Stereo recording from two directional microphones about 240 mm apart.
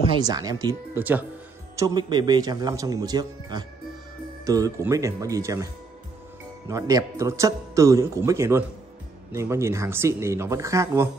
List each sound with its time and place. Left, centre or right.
0.0 s speech: centre
6.7 s speech: centre